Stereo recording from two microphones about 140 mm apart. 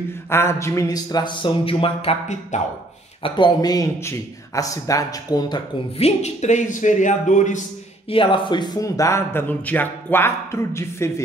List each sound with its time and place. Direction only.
0.3 s speech: 20° left (ahead or behind); by 2.6 s 50° left (ahead or behind)
3.2 s speech: 35° left (ahead or behind)
5.9 s a man's voice: 50° left (ahead or behind)
8.1 s speech: 35° left (ahead or behind); by 11.2 s 20° left (ahead or behind)